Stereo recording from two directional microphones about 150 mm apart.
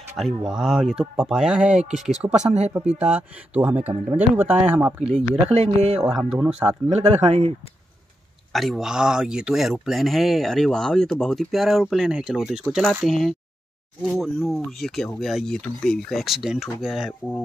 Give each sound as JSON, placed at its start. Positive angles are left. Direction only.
{"t": 0.2, "sound": "speech", "side_deg": -5}
{"t": 6.9, "sound": "speech", "side_deg": -40}
{"t": 8.5, "sound": "speech", "side_deg": 0}